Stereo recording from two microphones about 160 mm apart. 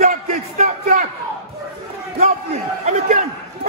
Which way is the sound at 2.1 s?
45° right (ahead or behind).